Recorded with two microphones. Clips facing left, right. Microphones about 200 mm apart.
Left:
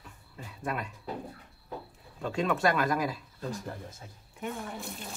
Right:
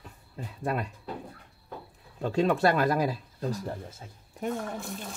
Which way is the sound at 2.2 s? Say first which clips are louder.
Right 4 dB; 35° right (ahead or behind).